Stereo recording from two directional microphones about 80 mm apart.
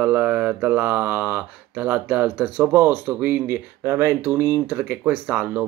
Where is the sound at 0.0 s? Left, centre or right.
Centre.